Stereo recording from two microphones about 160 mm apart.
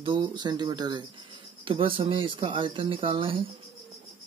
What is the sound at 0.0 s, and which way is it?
Speech, 30° right (ahead or behind).